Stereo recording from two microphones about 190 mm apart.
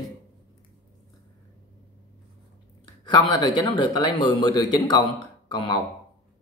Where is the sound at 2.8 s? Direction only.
20° left (ahead or behind).